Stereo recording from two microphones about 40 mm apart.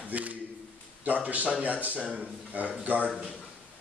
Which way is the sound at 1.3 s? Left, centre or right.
Right.